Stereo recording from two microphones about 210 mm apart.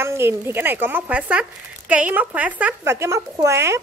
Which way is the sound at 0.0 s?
10° right (ahead or behind).